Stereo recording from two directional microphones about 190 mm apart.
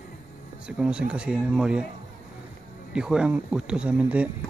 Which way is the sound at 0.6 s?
5° right (ahead or behind).